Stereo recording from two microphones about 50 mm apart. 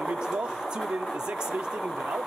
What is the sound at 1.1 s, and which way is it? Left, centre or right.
Speech, centre.